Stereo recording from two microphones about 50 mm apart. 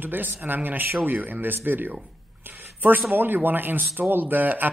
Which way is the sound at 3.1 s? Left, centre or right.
Right.